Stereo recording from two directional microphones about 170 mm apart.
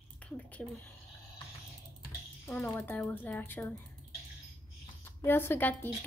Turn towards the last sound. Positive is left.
turn(degrees=10)  # may be behind; listen again after turning